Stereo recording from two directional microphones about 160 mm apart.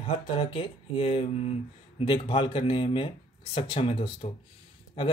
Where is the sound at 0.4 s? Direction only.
35° left (ahead or behind).